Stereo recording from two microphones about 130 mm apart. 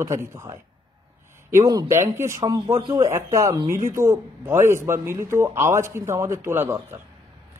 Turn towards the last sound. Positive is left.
turn(degrees=-20)  # may be behind; listen again after turning